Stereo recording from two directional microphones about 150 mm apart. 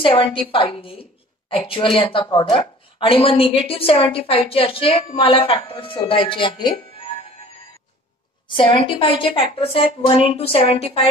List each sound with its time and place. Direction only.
0.0 s a woman's voice: 35° left (ahead or behind)
8.5 s a woman's voice: 35° left (ahead or behind)